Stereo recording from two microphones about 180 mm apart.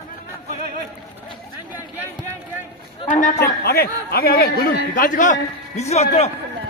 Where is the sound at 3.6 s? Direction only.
60° left (ahead or behind); by 6.0 s 40° left (ahead or behind).